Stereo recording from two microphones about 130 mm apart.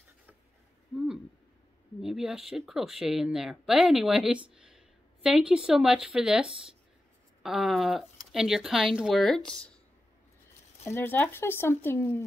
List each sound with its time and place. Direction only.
0.9 s speech: 5° right (ahead or behind)
7.4 s speech: centre (ahead or behind)
10.9 s speech: 15° left (ahead or behind)